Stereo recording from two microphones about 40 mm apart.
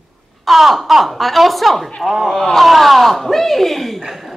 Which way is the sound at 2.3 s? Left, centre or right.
Centre.